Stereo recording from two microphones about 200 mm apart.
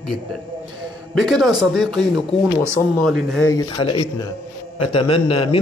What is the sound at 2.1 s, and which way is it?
Speech, 15° right (ahead or behind).